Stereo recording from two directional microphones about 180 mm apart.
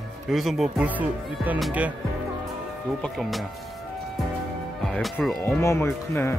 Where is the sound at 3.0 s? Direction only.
Centre (ahead or behind).